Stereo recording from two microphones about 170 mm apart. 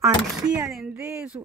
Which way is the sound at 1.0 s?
15° right (ahead or behind).